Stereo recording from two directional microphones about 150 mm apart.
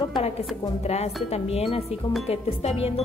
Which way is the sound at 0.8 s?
45° left (ahead or behind).